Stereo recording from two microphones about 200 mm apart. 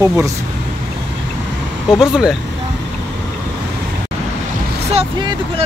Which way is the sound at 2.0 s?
5° right (ahead or behind).